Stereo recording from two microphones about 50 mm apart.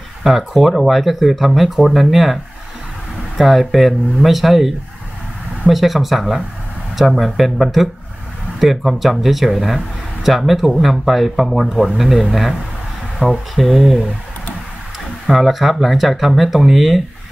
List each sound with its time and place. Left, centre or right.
0.2 s speech: centre
3.3 s speech: centre
13.2 s speech: right
13.6 s speech: centre
15.2 s speech: centre